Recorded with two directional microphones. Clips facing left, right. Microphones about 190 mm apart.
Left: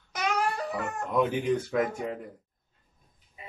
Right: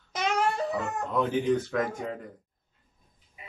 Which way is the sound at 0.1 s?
25° right (ahead or behind).